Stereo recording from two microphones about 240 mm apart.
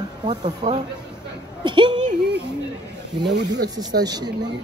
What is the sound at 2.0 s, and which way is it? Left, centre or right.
Speech, right.